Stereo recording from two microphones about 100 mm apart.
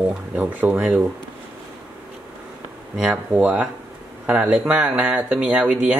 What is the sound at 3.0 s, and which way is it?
Speech, 10° right (ahead or behind).